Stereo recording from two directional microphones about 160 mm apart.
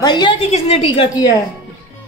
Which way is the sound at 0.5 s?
40° left (ahead or behind).